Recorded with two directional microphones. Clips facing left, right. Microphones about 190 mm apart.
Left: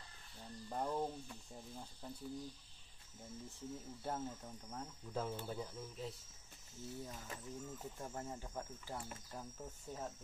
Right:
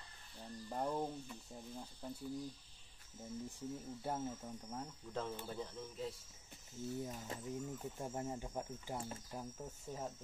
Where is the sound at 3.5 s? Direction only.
15° right (ahead or behind).